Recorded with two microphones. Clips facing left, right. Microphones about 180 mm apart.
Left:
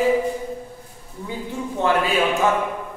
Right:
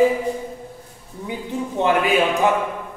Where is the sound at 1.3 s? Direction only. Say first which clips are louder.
Right 2 dB; 20° right (ahead or behind).